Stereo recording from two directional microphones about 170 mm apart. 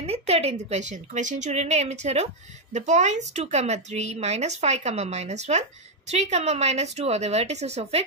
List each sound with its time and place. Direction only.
0.0 s a woman's voice: 35° right (ahead or behind)